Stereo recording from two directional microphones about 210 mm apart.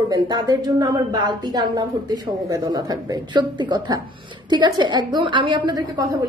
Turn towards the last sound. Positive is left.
turn(degrees=-15)  # may be behind; listen again after turning